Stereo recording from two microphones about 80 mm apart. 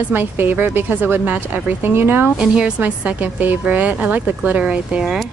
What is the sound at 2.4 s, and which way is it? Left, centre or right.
A woman's voice, centre.